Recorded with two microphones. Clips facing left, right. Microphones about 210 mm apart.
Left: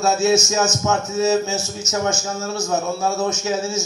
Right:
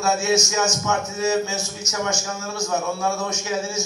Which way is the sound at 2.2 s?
25° left (ahead or behind).